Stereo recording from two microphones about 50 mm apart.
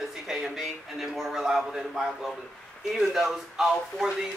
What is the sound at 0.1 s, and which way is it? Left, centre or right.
Speech, centre.